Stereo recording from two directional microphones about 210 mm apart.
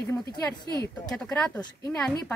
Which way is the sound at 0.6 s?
20° right (ahead or behind).